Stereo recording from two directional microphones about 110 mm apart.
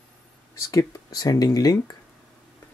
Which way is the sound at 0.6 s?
35° left (ahead or behind).